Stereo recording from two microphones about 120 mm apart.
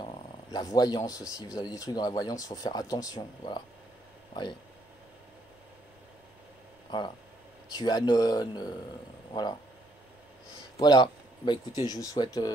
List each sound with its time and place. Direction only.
0.0 s purr: 45° left (ahead or behind)
0.6 s speech: 30° left (ahead or behind)
7.7 s speech: 35° left (ahead or behind)
10.8 s speech: 35° left (ahead or behind)